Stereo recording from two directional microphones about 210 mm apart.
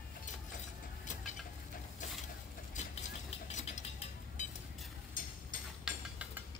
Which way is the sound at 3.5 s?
35° left (ahead or behind).